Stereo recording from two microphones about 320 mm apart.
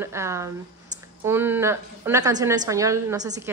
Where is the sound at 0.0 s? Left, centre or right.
Centre.